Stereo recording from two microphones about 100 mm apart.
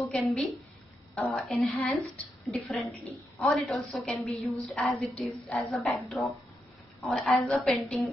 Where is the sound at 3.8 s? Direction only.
Centre (ahead or behind).